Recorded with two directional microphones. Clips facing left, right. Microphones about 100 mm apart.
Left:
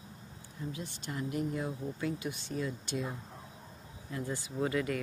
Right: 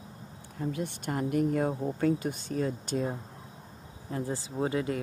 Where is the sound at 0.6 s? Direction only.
60° right (ahead or behind).